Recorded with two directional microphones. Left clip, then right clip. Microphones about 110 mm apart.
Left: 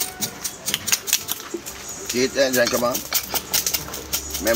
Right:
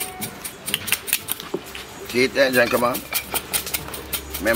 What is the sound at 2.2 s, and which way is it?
Speech, 20° right (ahead or behind).